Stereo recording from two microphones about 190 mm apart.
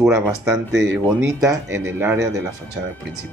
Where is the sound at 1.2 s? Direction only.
15° right (ahead or behind).